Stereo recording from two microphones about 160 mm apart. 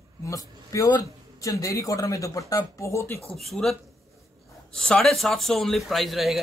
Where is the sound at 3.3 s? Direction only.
Centre (ahead or behind).